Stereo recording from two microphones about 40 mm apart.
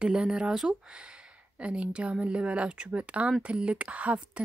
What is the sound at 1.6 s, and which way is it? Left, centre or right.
A woman's voice, right.